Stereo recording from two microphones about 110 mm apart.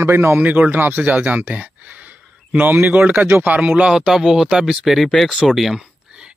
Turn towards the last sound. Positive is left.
turn(degrees=-5)  # may be behind; listen again after turning